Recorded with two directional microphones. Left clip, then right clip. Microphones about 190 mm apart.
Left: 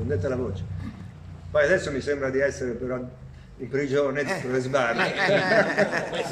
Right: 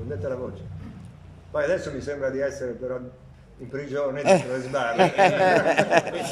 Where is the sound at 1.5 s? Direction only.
10° right (ahead or behind).